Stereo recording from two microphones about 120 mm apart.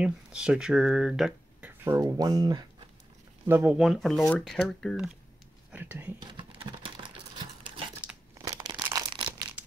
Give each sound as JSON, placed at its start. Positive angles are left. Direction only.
{"t": 0.0, "sound": "speech", "side_deg": -10}
{"t": 1.6, "sound": "speech", "side_deg": -25}
{"t": 3.4, "sound": "speech", "side_deg": -15}
{"t": 3.7, "sound": "speech", "side_deg": 0}
{"t": 5.7, "sound": "speech", "side_deg": -15}
{"t": 6.3, "sound": "a sound", "side_deg": -45}
{"t": 8.4, "sound": "a sound", "side_deg": -30}
{"t": 8.9, "sound": "crumpling", "side_deg": -40}